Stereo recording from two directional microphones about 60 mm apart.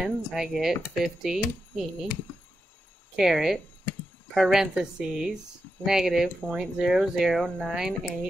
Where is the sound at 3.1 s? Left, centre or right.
Centre.